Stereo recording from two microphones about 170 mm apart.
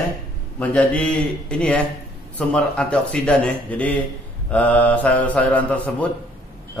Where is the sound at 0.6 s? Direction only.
10° left (ahead or behind).